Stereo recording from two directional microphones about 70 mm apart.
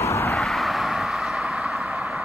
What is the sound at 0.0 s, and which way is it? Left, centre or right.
Vehicle, left.